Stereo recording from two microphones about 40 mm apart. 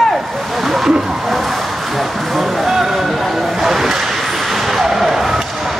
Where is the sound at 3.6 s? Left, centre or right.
Centre.